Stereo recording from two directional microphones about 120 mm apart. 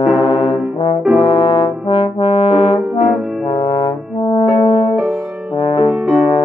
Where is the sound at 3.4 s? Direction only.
45° left (ahead or behind).